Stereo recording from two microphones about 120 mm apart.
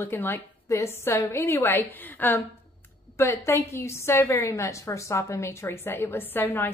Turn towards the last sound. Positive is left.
turn(degrees=20)  # may be behind; listen again after turning